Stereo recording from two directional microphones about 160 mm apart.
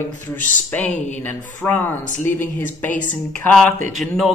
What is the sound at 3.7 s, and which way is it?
Speech, 55° right (ahead or behind).